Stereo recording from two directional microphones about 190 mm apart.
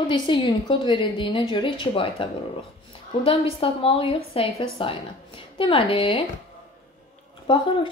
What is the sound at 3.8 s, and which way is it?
A woman's voice, 30° left (ahead or behind).